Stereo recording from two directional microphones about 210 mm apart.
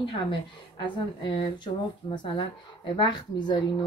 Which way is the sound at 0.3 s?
25° left (ahead or behind).